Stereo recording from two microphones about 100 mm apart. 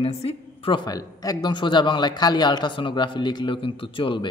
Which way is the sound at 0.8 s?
40° left (ahead or behind).